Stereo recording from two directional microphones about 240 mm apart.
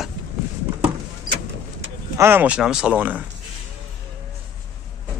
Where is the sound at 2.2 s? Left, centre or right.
Centre.